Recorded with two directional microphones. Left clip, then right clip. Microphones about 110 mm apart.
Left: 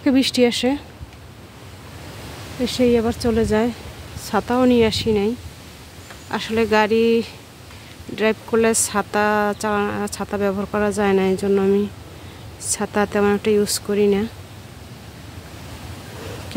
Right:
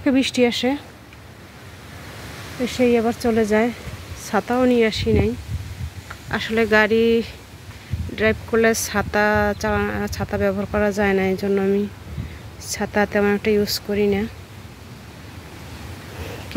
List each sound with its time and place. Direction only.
0.0 s speech: 25° left (ahead or behind)
2.6 s speech: 25° left (ahead or behind)
6.3 s speech: 15° left (ahead or behind)
8.5 s speech: 15° left (ahead or behind)
10.9 s speech: 25° left (ahead or behind)
12.8 s speech: 20° left (ahead or behind)